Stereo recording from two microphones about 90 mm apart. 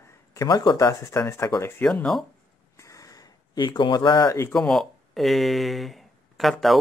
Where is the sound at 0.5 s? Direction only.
50° left (ahead or behind); by 1.7 s 35° left (ahead or behind).